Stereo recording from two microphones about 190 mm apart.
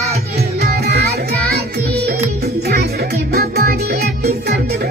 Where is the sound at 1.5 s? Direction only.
55° right (ahead or behind).